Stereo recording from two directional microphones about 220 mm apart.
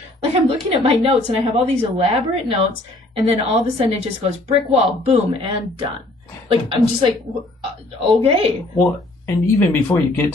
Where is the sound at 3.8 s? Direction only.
30° right (ahead or behind).